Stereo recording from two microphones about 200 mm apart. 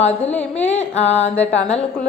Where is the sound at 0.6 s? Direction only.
35° left (ahead or behind).